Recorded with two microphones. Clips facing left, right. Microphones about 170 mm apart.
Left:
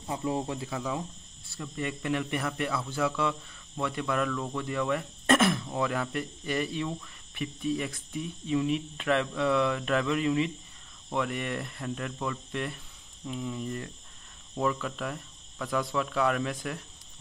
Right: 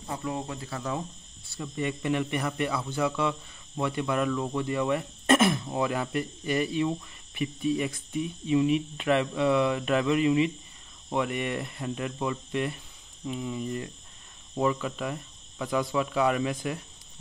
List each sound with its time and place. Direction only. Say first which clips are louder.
0.1 s speech: left 2 dB; 20° left (ahead or behind)
1.5 s speech: right 3 dB; centre (ahead or behind)
4.3 s speech: right 4 dB; 15° right (ahead or behind)
4.6 s speech: right 1 dB; 5° right (ahead or behind)